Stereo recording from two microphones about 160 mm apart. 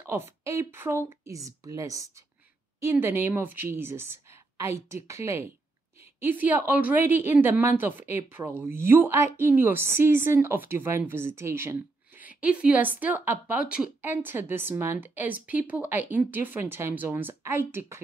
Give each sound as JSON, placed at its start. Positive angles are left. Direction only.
{"t": 0.4, "sound": "a woman's voice", "side_deg": -20}